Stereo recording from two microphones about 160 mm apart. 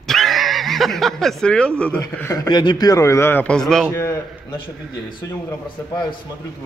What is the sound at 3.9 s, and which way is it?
Speech, 15° left (ahead or behind).